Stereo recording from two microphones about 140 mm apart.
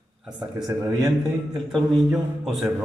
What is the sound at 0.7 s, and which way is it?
Speech, 30° right (ahead or behind).